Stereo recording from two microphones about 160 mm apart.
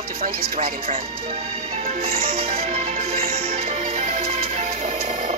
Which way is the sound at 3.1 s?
65° right (ahead or behind).